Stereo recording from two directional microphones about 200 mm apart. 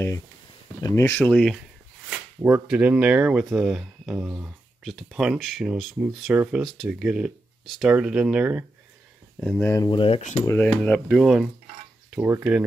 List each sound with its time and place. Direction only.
0.7 s speech: 15° left (ahead or behind)
2.0 s speech: 10° right (ahead or behind)
9.7 s speech: 20° left (ahead or behind)
10.4 s speech: 10° left (ahead or behind); by 12.6 s 5° right (ahead or behind)